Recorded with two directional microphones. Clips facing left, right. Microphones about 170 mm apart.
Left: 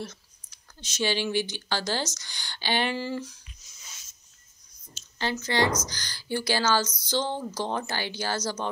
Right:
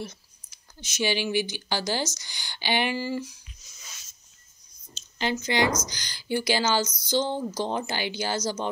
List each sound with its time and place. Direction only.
0.0 s speech: 10° right (ahead or behind)
5.2 s speech: 15° right (ahead or behind)